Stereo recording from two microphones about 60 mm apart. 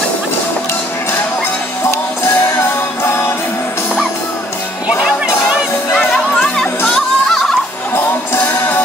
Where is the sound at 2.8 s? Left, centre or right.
Left.